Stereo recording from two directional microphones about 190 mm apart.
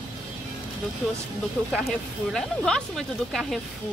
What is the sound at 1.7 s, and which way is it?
Speech, centre (ahead or behind).